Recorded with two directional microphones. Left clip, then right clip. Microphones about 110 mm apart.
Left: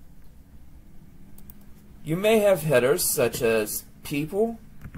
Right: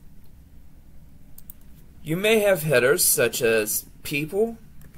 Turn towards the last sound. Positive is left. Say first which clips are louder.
# right 2 dB
turn(degrees=0)  # may be behind; listen again after turning